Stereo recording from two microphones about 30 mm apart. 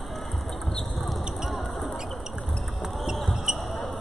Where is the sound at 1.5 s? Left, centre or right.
Centre.